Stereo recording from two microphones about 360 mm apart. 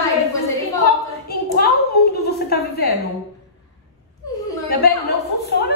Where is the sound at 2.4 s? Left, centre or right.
Left.